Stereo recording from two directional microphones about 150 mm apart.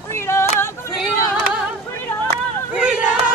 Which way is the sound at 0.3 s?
15° left (ahead or behind).